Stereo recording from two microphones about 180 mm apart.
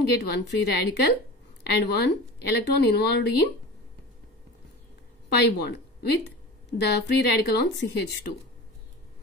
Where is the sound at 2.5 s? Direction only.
65° left (ahead or behind).